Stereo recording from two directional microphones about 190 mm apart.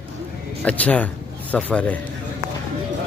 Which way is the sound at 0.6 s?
10° left (ahead or behind).